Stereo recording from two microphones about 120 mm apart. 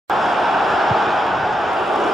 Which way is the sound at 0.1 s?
Centre (ahead or behind).